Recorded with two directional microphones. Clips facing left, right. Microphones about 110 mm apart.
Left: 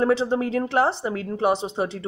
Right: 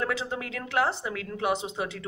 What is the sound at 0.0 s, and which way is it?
Speech, 35° left (ahead or behind).